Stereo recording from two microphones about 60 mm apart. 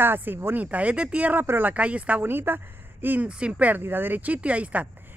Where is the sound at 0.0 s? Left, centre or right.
Right.